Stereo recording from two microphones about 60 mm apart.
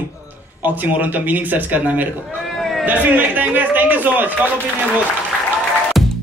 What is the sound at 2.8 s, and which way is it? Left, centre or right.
A man's voice, right.